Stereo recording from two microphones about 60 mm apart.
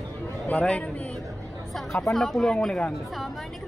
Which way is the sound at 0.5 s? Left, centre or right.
Left.